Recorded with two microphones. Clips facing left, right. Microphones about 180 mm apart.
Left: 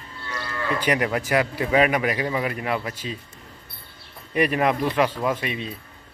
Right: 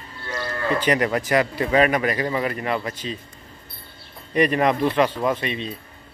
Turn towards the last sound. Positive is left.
turn(degrees=10)  # may be behind; listen again after turning